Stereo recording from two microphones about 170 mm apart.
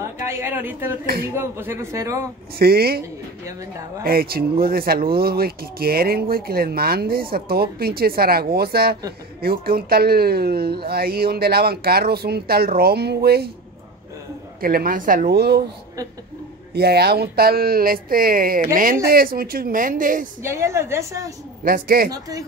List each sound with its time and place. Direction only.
0.0 s a woman's voice: 15° right (ahead or behind)
1.0 s speech: 65° right (ahead or behind)
1.3 s speech: 15° right (ahead or behind)
2.6 s speech: 65° right (ahead or behind)
4.0 s speech: 65° right (ahead or behind)
14.6 s speech: 60° right (ahead or behind)
16.7 s speech: 70° right (ahead or behind); by 20.2 s 55° right (ahead or behind)
20.4 s speech: 15° right (ahead or behind)
21.6 s speech: 60° right (ahead or behind)